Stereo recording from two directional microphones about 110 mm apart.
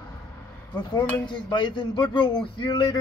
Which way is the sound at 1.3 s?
45° left (ahead or behind).